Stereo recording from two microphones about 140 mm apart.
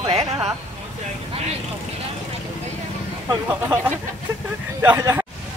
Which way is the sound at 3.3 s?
15° right (ahead or behind).